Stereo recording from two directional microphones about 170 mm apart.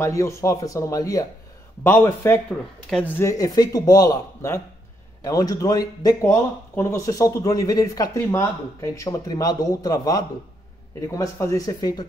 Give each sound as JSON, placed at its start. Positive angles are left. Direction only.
{"t": 0.0, "sound": "a man's voice", "side_deg": 15}